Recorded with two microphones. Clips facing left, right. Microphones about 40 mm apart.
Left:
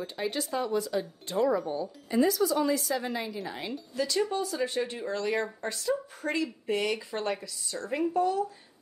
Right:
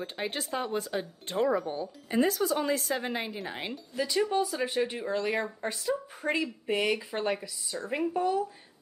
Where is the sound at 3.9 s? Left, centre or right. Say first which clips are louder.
Right 1 dB; centre.